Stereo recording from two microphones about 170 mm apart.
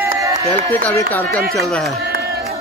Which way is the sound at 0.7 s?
15° left (ahead or behind).